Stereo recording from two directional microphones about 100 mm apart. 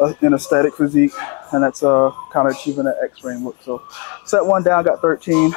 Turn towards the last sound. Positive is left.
turn(degrees=20)  # may be behind; listen again after turning